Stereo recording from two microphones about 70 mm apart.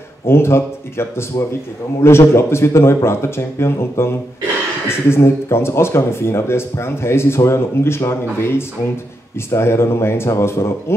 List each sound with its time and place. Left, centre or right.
0.3 s speech: left